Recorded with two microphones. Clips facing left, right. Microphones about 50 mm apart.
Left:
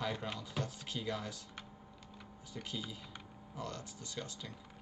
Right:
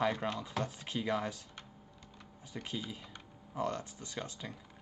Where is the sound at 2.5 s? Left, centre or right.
Right.